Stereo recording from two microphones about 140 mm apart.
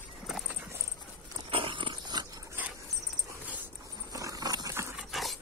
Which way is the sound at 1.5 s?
35° right (ahead or behind).